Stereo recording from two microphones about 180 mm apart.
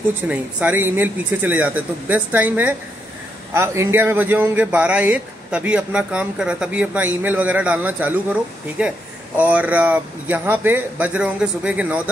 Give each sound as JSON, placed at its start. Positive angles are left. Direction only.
{"t": 0.3, "sound": "a man's voice", "side_deg": -10}